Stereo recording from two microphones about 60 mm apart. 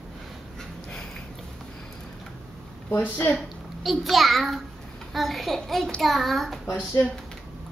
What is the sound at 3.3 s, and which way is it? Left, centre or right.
A child's voice, centre.